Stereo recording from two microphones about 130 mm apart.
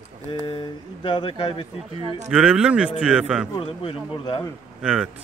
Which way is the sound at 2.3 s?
5° right (ahead or behind).